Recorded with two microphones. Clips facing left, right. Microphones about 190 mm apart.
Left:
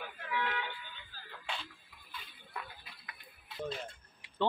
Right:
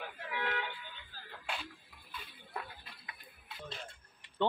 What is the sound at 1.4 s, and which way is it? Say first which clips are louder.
Music: right 1 dB; 10° right (ahead or behind).